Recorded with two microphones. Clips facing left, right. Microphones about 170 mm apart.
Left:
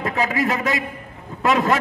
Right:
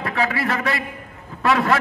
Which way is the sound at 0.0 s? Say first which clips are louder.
Left 1 dB; 20° left (ahead or behind).